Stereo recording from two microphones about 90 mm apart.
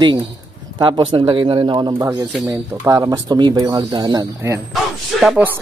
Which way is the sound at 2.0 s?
35° right (ahead or behind).